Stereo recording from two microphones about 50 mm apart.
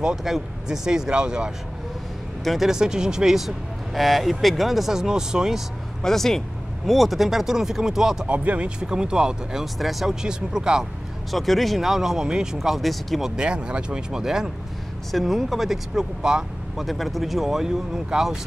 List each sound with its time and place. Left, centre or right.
0.0 s speech: centre
2.4 s speech: centre
6.0 s speech: centre
8.3 s speech: right
9.8 s speech: centre
10.2 s speech: centre
11.3 s speech: centre
13.4 s speech: centre
15.9 s speech: centre
16.8 s speech: centre